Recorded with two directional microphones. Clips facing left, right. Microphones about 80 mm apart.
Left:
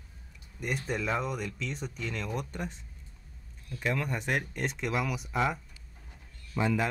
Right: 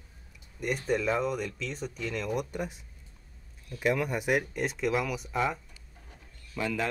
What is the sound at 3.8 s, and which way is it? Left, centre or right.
Speech, centre.